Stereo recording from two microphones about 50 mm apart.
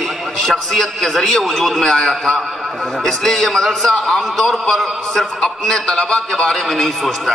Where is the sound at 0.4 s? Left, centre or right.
Centre.